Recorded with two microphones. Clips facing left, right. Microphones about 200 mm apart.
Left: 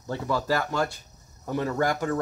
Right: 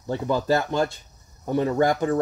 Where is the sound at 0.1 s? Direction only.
20° right (ahead or behind).